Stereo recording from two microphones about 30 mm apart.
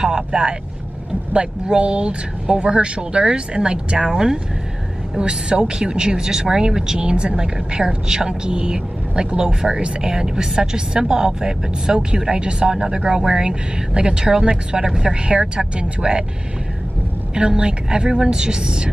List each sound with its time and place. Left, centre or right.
0.0 s vehicle: right
1.3 s speech: right
7.0 s speech: right
7.3 s speech: right
12.4 s speech: right
14.4 s speech: right
17.3 s speech: right